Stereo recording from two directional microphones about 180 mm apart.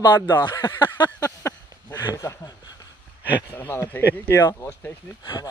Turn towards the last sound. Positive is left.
turn(degrees=10)  # may be behind; listen again after turning